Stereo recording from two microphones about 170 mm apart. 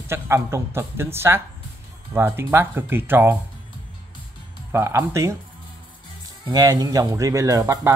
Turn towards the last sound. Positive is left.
turn(degrees=-20)  # may be behind; listen again after turning